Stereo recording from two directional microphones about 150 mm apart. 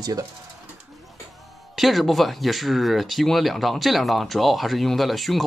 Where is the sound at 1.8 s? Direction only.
Centre (ahead or behind).